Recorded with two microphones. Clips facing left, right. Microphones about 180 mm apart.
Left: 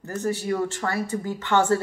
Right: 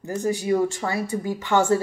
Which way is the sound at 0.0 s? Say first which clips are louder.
Right 2 dB; 15° right (ahead or behind).